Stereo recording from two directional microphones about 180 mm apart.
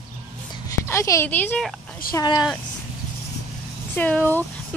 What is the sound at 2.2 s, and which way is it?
Speech, 20° left (ahead or behind).